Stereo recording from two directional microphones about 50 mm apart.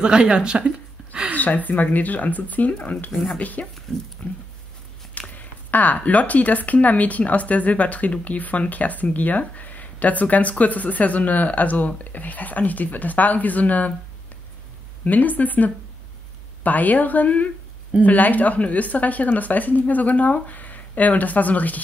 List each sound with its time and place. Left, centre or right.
0.0 s a sound: centre
1.3 s speech: left
3.9 s speech: centre
5.1 s speech: left
15.0 s speech: left